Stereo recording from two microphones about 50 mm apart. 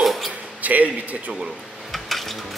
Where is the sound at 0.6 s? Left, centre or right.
Right.